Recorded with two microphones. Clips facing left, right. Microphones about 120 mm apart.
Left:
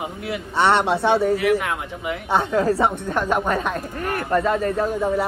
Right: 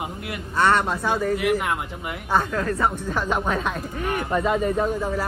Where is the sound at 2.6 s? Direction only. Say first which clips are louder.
Left 4 dB; 30° left (ahead or behind).